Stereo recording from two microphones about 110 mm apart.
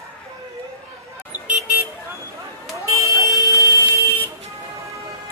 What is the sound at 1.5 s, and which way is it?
Vehicle, 15° right (ahead or behind).